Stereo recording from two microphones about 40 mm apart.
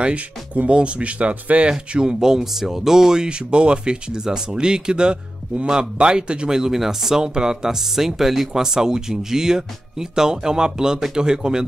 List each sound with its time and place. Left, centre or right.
0.0 s speech: right
1.7 s speech: centre
6.5 s speech: centre